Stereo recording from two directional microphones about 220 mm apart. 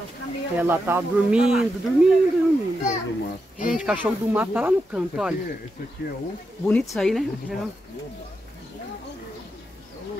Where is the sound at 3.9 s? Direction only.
5° right (ahead or behind).